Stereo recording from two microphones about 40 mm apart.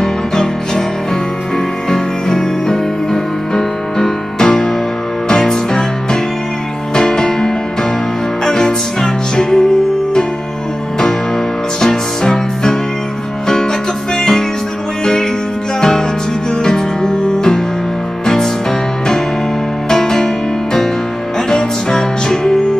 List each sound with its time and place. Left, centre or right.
0.0 s music: centre
1.9 s music: centre
7.0 s music: centre
11.8 s music: centre
16.6 s music: centre
19.9 s music: centre
21.5 s music: centre